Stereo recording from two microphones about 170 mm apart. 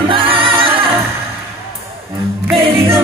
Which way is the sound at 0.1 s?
30° right (ahead or behind).